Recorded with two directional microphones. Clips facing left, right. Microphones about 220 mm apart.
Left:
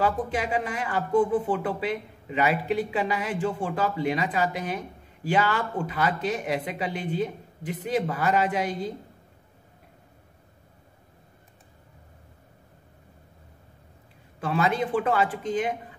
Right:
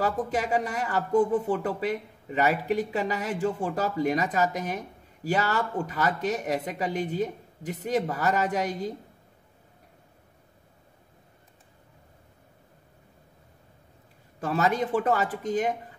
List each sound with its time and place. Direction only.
0.0 s speech: 40° right (ahead or behind)
14.4 s speech: 40° right (ahead or behind)